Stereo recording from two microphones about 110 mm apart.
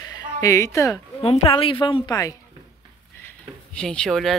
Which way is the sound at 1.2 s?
60° left (ahead or behind).